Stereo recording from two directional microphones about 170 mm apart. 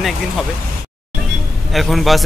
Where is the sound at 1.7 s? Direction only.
Centre (ahead or behind).